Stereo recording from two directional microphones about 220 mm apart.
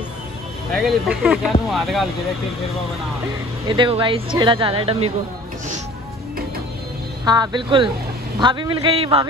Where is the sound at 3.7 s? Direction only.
20° right (ahead or behind).